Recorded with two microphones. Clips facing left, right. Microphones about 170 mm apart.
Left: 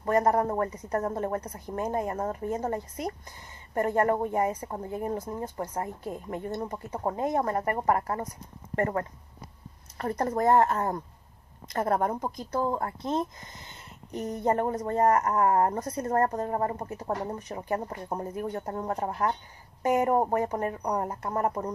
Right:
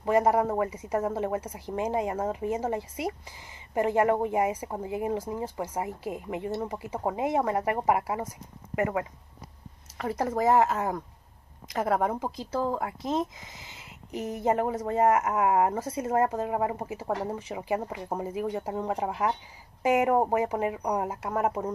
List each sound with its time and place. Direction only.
0.1 s a woman's voice: 10° right (ahead or behind)
10.0 s a woman's voice: 5° right (ahead or behind)
13.6 s speech: 90° right
14.1 s a woman's voice: 5° right (ahead or behind)